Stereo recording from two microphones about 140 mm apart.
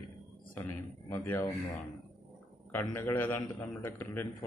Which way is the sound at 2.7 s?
20° left (ahead or behind).